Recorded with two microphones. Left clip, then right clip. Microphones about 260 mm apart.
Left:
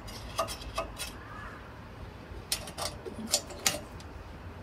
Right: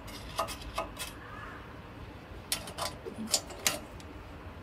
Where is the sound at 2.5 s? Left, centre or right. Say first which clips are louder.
Even; centre.